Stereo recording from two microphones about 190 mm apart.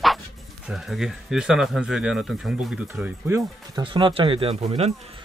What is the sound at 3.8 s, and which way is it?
Speech, 25° right (ahead or behind).